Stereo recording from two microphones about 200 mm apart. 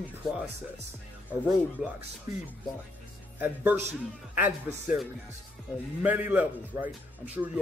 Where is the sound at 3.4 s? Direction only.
10° right (ahead or behind).